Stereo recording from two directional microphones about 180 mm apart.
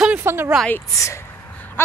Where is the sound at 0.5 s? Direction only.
5° left (ahead or behind).